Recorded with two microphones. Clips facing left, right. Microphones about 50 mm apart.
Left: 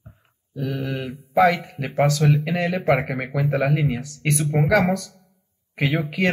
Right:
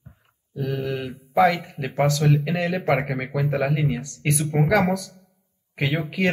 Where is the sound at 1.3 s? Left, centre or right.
Centre.